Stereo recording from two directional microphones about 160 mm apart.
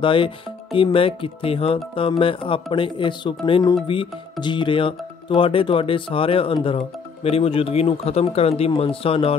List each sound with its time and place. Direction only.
0.0 s speech: 30° left (ahead or behind)